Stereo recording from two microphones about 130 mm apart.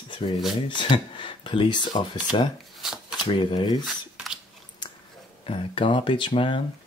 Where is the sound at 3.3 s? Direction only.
40° left (ahead or behind).